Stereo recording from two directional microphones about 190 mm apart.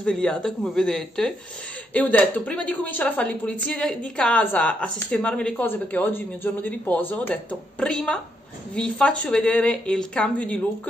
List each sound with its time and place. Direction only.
0.0 s a woman's voice: 5° left (ahead or behind)